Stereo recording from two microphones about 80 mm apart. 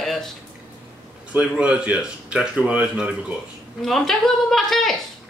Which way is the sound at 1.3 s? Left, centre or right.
Centre.